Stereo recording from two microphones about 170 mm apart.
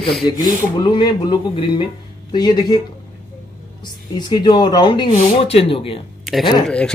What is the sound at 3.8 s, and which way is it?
Speech, 25° left (ahead or behind).